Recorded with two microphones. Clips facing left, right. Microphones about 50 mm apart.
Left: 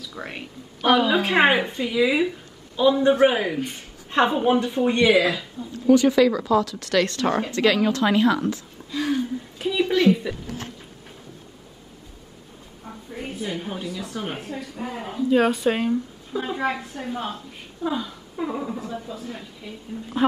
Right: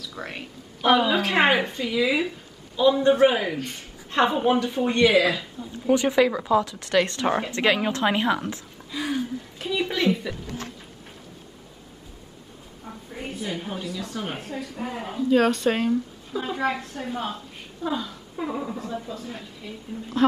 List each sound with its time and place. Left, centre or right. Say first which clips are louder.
0.0 s a woman's voice: left 1 dB; centre
5.7 s speech: left 5 dB; right
8.9 s a sound: left 3 dB; centre
12.8 s a woman's voice: left 1 dB; centre